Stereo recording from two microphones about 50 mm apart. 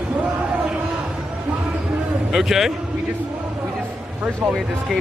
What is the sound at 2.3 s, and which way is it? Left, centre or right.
Speech, centre.